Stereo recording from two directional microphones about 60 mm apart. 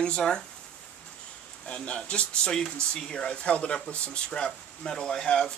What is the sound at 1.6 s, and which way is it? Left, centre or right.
Speech, centre.